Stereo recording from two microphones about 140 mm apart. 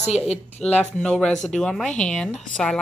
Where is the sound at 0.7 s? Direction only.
5° left (ahead or behind).